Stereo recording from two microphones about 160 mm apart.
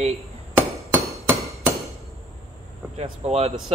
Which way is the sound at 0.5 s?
15° right (ahead or behind).